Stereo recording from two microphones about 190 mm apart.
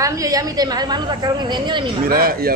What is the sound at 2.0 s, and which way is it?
Speech, 50° right (ahead or behind).